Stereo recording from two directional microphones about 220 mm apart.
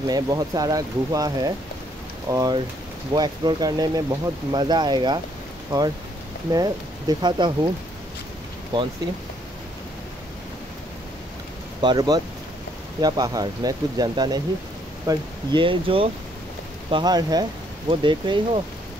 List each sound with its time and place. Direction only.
0.0 s speech: 15° right (ahead or behind)
8.7 s speech: 20° right (ahead or behind)
11.8 s speech: 20° right (ahead or behind)